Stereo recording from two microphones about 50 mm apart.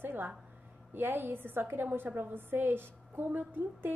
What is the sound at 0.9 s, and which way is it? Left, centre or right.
A woman's voice, right.